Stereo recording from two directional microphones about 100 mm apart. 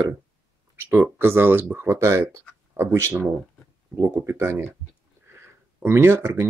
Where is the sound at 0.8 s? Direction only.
20° right (ahead or behind).